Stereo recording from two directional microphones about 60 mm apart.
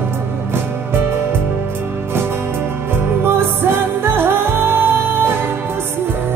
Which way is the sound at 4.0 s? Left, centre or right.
Right.